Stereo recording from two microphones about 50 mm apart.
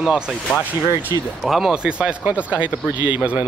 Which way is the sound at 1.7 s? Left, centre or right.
Centre.